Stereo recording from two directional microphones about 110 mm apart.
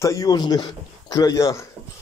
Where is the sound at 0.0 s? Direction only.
30° left (ahead or behind).